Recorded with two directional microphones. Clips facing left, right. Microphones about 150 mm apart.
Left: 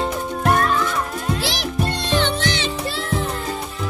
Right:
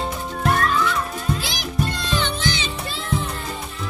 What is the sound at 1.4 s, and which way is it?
Music, 80° left.